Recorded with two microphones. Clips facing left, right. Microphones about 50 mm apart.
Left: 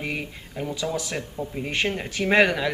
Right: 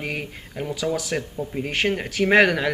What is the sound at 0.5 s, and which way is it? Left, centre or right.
Speech, centre.